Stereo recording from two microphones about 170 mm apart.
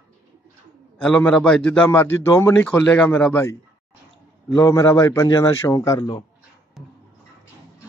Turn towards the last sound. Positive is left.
turn(degrees=0)  # may be behind; listen again after turning